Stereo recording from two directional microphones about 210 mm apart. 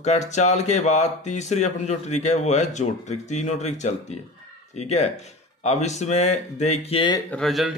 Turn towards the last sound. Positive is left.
turn(degrees=0)  # may be behind; listen again after turning